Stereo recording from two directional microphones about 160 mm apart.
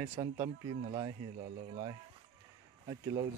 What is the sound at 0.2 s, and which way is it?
Speech, 25° right (ahead or behind).